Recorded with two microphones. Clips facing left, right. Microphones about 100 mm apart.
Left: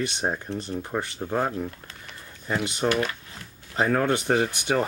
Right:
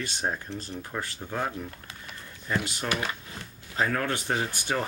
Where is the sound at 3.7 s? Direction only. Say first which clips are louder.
Left 5 dB; 25° left (ahead or behind).